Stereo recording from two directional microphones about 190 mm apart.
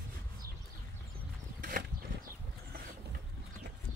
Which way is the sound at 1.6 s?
45° right (ahead or behind).